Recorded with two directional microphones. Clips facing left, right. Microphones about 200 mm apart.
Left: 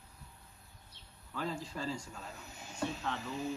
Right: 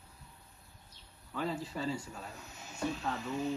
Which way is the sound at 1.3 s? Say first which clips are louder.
Right 2 dB; 5° right (ahead or behind).